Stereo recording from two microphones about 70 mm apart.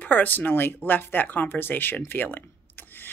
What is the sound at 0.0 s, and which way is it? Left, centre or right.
Speech, left.